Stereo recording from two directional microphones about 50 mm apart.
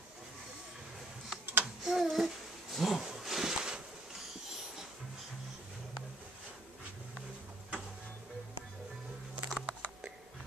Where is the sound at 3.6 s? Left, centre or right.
Centre.